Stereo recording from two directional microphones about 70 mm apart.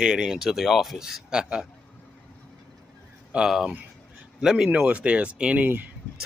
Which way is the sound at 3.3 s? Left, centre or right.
Centre.